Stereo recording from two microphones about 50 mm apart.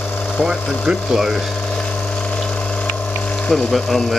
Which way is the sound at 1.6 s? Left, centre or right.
Left.